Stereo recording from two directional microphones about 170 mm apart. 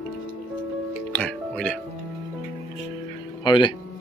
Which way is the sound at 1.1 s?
5° left (ahead or behind).